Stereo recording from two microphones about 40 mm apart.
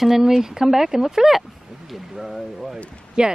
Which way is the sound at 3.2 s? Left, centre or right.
Right.